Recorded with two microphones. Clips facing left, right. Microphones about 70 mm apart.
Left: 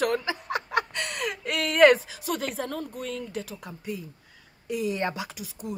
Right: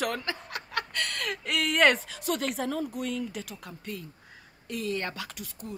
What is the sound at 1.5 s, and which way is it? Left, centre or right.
A woman's voice, centre.